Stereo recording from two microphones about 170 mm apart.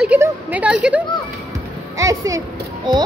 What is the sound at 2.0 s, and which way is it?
Speech, 20° right (ahead or behind).